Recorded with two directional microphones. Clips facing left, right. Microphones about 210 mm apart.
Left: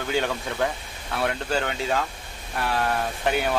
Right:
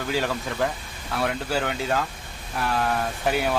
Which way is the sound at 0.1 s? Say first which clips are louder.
Left 1 dB; centre (ahead or behind).